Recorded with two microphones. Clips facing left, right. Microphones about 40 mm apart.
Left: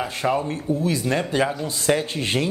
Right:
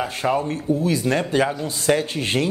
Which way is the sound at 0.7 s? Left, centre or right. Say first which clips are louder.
Right 1 dB; right.